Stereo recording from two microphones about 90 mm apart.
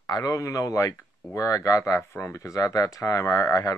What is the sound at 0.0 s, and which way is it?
Speech, 45° left (ahead or behind).